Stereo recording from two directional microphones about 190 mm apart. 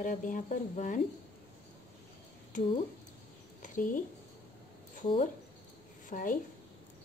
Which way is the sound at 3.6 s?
45° left (ahead or behind).